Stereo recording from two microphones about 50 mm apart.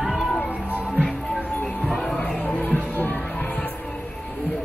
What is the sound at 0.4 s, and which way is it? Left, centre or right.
Music, left.